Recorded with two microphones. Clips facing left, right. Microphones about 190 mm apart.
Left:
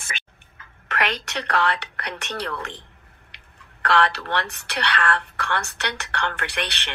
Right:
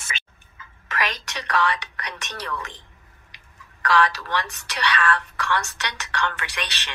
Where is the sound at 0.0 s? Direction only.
55° left (ahead or behind).